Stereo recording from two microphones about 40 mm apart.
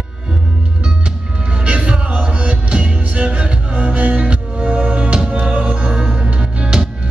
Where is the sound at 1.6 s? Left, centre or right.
Right.